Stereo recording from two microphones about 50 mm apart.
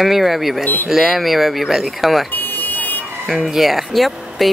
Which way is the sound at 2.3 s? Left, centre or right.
Left.